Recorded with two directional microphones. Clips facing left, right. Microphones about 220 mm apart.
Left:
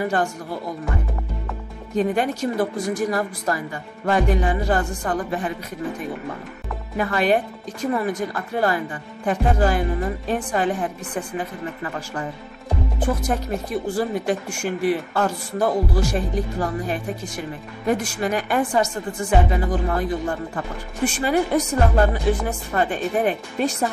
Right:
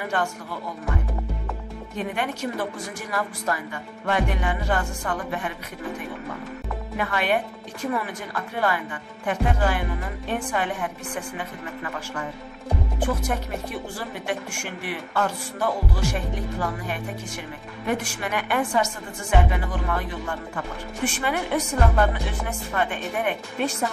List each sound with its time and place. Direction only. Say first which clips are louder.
0.0 s a woman's voice: left 5 dB; 40° left (ahead or behind)
2.0 s a woman's voice: left 7 dB; 35° left (ahead or behind)
7.0 s a woman's voice: left 5 dB; 35° left (ahead or behind)
13.9 s a woman's voice: left 10 dB; 40° left (ahead or behind)